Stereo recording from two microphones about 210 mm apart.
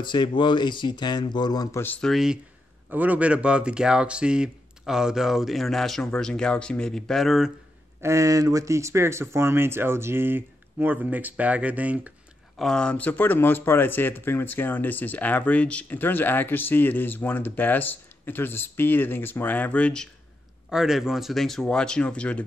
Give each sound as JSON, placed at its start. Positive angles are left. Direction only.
{"t": 0.0, "sound": "speech", "side_deg": 20}
{"t": 8.0, "sound": "speech", "side_deg": -15}